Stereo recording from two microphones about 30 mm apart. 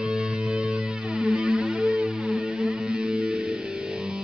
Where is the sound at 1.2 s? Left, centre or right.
Right.